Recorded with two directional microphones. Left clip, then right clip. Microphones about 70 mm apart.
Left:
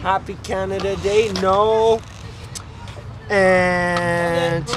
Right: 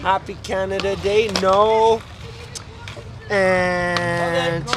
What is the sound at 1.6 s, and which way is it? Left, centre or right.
Speech, centre.